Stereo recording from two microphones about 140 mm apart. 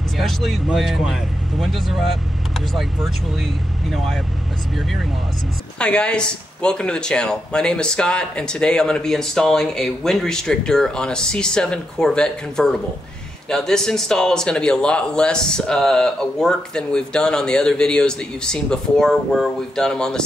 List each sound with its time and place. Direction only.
0.2 s speech: centre (ahead or behind)
5.8 s speech: 5° left (ahead or behind)